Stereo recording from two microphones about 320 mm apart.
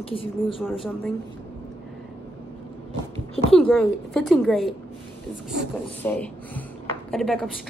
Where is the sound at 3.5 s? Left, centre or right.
Centre.